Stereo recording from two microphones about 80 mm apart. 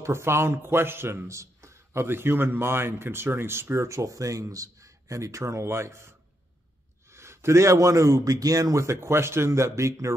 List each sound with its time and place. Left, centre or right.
0.0 s speech: right